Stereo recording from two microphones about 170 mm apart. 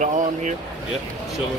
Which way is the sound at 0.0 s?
45° right (ahead or behind).